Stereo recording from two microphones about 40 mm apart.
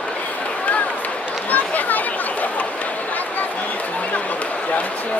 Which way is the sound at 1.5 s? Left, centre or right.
Left.